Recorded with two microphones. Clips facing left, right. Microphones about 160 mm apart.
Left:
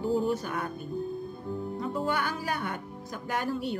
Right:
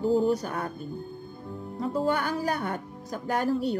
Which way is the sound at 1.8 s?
35° right (ahead or behind).